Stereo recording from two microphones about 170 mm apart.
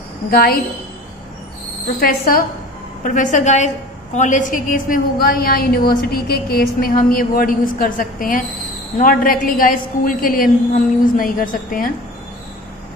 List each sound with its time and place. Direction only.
0.3 s a woman's voice: 60° left (ahead or behind)
2.0 s a woman's voice: 60° left (ahead or behind)